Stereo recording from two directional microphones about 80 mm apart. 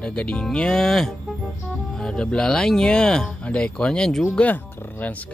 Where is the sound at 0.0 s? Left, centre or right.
Centre.